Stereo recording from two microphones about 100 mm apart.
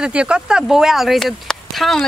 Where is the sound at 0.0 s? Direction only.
10° right (ahead or behind).